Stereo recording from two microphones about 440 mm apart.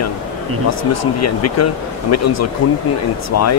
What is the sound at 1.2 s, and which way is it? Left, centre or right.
Speech, left.